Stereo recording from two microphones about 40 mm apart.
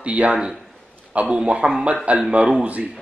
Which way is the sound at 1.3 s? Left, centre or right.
Right.